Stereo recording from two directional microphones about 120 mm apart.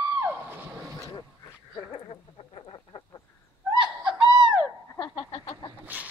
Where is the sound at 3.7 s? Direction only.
40° right (ahead or behind).